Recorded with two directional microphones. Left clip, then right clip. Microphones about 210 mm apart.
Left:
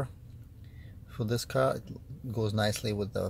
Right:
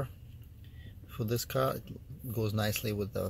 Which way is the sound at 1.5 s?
10° left (ahead or behind).